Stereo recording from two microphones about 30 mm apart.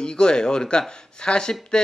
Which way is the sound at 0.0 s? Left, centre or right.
Left.